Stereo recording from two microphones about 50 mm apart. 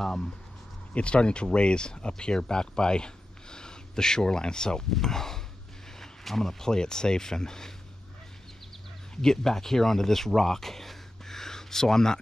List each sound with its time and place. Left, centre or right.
0.0 s speech: centre
9.1 s speech: centre